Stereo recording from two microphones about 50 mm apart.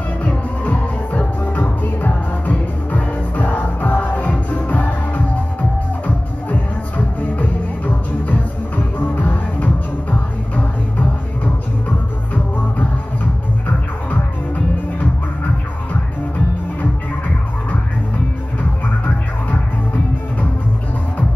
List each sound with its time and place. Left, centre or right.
0.2 s music: left
7.2 s music: left